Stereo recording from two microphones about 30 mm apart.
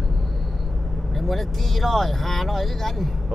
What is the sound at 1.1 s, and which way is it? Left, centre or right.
Speech, centre.